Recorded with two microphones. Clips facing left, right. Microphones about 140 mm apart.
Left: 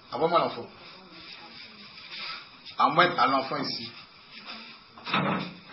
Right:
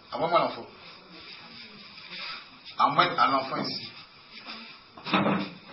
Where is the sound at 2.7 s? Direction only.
Centre (ahead or behind).